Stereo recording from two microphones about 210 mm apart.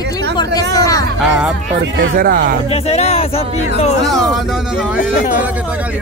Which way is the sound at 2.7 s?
30° left (ahead or behind).